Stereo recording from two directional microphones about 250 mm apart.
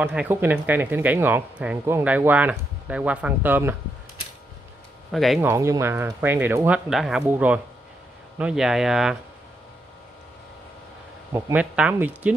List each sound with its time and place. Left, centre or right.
0.0 s speech: centre
5.1 s speech: centre
5.5 s speech: centre
11.3 s speech: centre